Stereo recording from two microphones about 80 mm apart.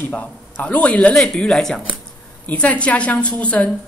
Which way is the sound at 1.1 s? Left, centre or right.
Centre.